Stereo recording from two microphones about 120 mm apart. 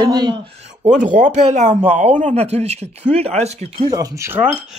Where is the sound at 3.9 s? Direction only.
30° right (ahead or behind).